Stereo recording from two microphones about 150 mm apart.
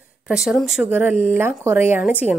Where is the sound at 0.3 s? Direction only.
Centre (ahead or behind).